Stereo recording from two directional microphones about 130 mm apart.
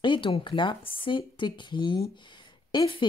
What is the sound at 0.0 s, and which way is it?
Speech, 40° left (ahead or behind).